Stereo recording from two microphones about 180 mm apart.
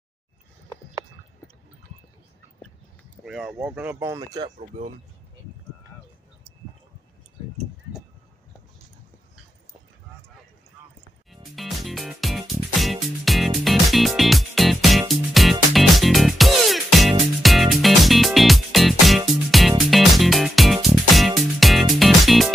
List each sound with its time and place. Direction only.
3.3 s speech: 5° right (ahead or behind); by 4.5 s 20° right (ahead or behind)
4.6 s speech: 40° right (ahead or behind)
11.5 s music: centre (ahead or behind)